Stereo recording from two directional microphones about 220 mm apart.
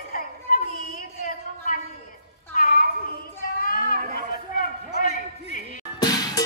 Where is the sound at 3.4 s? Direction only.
40° left (ahead or behind).